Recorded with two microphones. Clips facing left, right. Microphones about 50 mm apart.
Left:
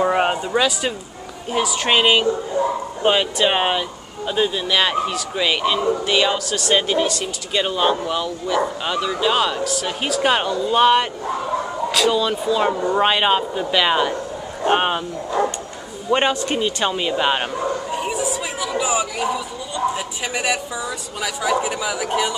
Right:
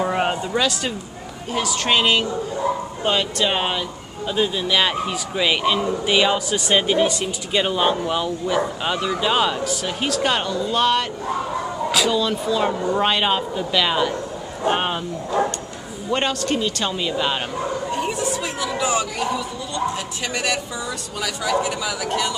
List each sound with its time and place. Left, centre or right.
0.0 s speech: centre
4.3 s speech: centre
9.8 s speech: centre
12.1 s speech: centre
16.1 s speech: centre
17.9 s a sound: centre
21.2 s speech: centre